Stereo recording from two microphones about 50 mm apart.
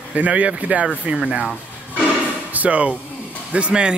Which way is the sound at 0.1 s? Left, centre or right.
Right.